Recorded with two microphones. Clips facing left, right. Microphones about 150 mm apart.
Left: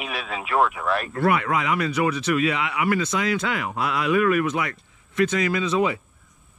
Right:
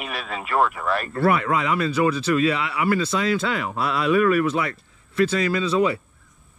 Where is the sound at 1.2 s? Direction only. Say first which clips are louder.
Right 2 dB; 30° right (ahead or behind).